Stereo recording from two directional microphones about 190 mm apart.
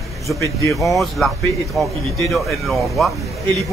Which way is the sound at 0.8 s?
Centre (ahead or behind).